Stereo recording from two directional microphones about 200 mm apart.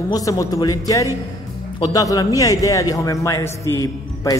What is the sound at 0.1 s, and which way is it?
A man's voice, 15° left (ahead or behind).